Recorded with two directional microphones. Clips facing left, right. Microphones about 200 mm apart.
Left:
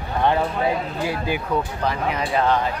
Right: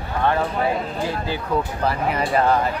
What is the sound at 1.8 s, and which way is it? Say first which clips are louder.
Speech: right 2 dB; centre (ahead or behind).